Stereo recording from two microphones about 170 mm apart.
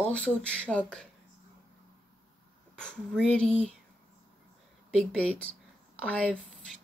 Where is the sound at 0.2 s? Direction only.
5° left (ahead or behind).